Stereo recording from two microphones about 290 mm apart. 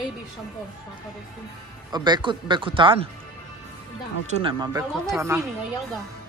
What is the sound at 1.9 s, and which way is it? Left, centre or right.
Speech, centre.